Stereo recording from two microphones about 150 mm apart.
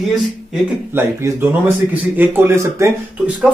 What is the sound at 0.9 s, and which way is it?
Speech, 15° right (ahead or behind).